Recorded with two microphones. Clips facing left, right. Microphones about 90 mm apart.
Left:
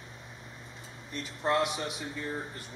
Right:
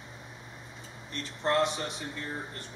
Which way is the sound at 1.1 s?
5° left (ahead or behind).